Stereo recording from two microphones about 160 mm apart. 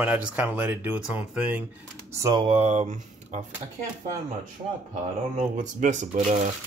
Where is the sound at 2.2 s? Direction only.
20° right (ahead or behind).